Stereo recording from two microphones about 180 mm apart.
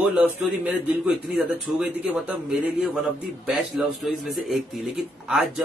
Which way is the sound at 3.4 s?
Centre (ahead or behind).